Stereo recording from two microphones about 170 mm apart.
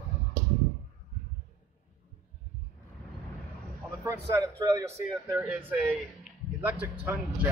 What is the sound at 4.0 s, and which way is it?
Speech, 20° right (ahead or behind).